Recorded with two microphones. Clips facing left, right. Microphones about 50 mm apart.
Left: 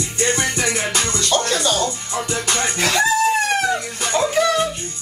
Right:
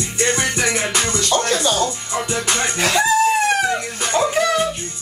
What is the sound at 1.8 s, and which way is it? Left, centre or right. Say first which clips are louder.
Music: right 1 dB; centre.